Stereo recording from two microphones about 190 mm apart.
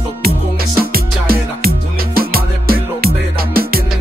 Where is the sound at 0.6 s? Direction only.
50° right (ahead or behind).